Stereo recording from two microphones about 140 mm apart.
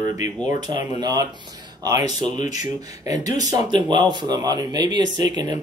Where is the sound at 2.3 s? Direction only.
55° left (ahead or behind).